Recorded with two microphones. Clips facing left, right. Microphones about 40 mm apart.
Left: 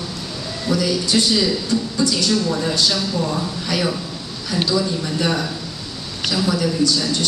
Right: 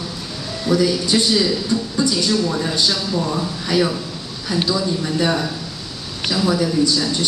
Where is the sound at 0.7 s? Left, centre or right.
Centre.